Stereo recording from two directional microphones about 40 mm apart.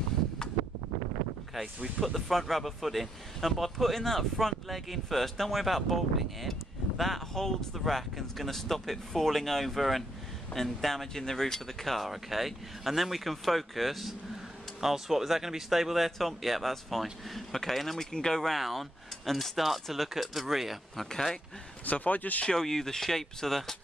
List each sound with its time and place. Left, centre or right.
2.1 s speech: centre
18.5 s speech: centre
21.1 s speech: centre
21.8 s speech: left
22.5 s speech: centre